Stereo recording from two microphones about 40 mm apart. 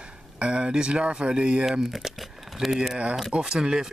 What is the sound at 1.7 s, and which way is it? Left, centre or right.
Speech, centre.